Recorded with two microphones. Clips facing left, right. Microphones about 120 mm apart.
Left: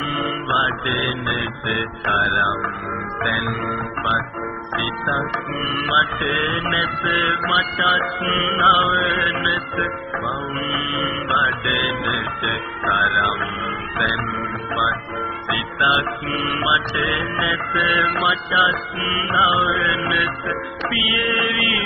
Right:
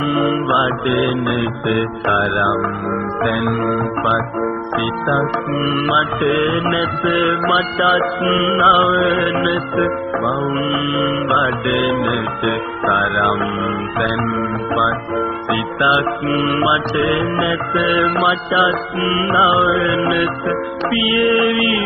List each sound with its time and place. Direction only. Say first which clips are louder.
0.1 s mantra: right 10 dB; 40° right (ahead or behind)
0.7 s music: right 7 dB; 25° right (ahead or behind)
14.8 s music: right 5 dB; 40° right (ahead or behind)